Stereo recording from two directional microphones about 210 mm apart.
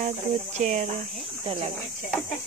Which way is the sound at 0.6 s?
35° right (ahead or behind).